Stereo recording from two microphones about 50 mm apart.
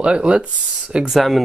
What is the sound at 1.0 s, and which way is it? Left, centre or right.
Speech, centre.